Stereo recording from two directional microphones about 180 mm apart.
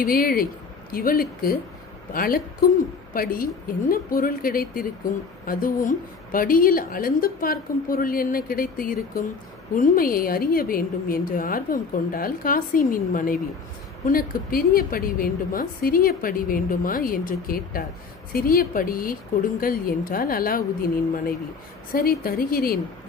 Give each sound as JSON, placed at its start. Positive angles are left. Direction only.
{"t": 0.0, "sound": "a woman's voice", "side_deg": 55}
{"t": 21.9, "sound": "speech", "side_deg": 55}